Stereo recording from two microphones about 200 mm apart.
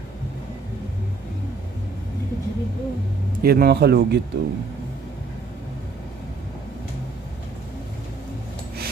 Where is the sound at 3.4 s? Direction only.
50° right (ahead or behind).